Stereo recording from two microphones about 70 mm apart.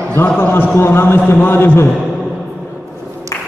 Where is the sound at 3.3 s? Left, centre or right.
Left.